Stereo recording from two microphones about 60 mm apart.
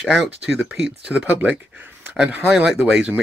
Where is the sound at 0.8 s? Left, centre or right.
Centre.